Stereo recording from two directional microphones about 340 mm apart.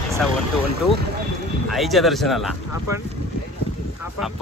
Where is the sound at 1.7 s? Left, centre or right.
Centre.